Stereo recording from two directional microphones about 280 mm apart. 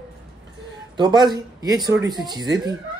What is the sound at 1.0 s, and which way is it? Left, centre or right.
Speech, centre.